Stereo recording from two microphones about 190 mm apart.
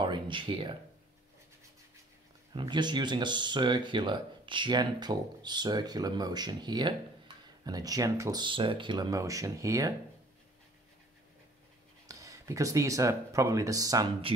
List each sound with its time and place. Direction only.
0.0 s a sound: 25° right (ahead or behind)
2.5 s speech: 25° right (ahead or behind)
12.1 s speech: 15° right (ahead or behind)